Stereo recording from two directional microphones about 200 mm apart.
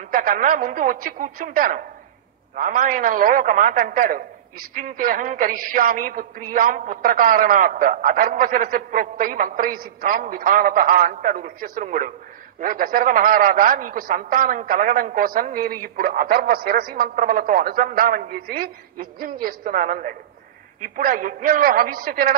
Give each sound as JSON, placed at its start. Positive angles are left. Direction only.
{"t": 0.0, "sound": "a man's voice", "side_deg": -45}